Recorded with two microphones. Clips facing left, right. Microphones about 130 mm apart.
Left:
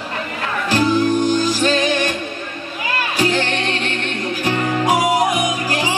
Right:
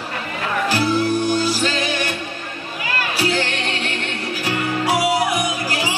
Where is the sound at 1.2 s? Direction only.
10° right (ahead or behind).